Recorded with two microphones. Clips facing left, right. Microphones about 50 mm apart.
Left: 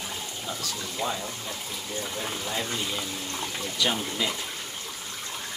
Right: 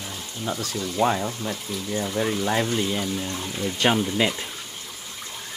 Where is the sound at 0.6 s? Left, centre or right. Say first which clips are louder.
Right 9 dB; right.